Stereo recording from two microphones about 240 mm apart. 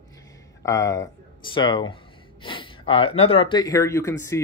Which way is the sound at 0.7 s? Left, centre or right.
Centre.